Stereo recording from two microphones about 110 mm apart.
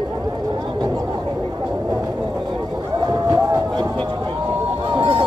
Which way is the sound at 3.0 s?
35° right (ahead or behind).